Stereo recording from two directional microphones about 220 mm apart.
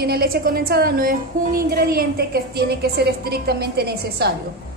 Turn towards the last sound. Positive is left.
turn(degrees=-45)  # may be behind; listen again after turning